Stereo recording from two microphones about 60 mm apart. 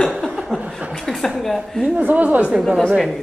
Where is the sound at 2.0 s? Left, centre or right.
Right.